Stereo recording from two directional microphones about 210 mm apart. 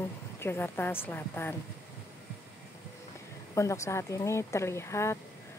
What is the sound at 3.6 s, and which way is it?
A woman's voice, 15° left (ahead or behind).